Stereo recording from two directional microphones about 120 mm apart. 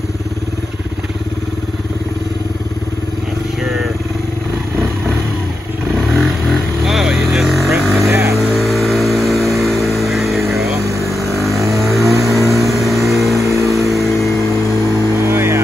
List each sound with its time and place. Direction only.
6.9 s vehicle: centre (ahead or behind)
8.0 s vehicle: 20° right (ahead or behind)
8.5 s vehicle: centre (ahead or behind)
13.4 s vehicle: 25° right (ahead or behind)
15.2 s vehicle: 20° right (ahead or behind)